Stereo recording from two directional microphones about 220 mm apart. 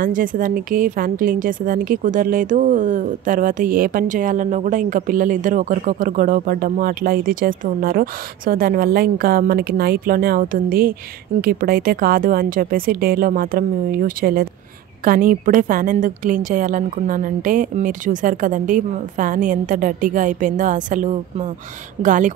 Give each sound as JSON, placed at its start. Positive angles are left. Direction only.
{"t": 0.0, "sound": "a woman's voice", "side_deg": -40}